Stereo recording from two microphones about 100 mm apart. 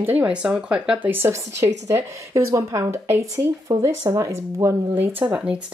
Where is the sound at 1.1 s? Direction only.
25° right (ahead or behind).